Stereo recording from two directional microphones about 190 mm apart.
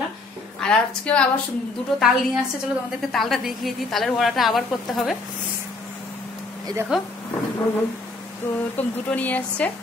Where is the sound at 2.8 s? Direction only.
Centre (ahead or behind).